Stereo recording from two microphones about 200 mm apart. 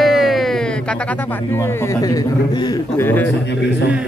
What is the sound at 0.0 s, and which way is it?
Speech, centre (ahead or behind).